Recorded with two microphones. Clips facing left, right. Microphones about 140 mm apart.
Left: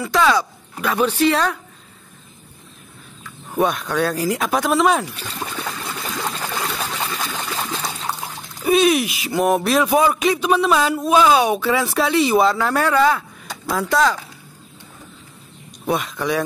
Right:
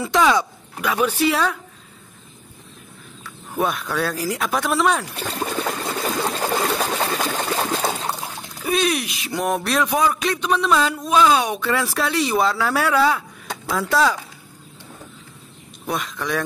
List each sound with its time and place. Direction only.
0.0 s a man's voice: 20° right (ahead or behind)
3.5 s speech: centre (ahead or behind)
5.7 s a sound: 45° right (ahead or behind)
8.6 s speech: 5° left (ahead or behind)
15.9 s speech: 5° left (ahead or behind)